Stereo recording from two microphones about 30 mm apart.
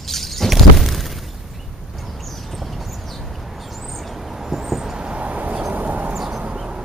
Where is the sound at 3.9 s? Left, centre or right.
Centre.